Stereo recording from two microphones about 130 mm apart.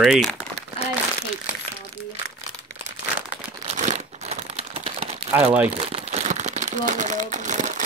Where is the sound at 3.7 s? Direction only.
65° right (ahead or behind).